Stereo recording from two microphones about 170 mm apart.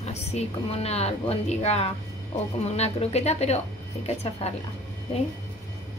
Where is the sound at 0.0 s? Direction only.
40° left (ahead or behind).